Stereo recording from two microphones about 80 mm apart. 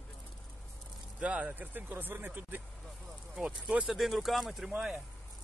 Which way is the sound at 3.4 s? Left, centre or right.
Centre.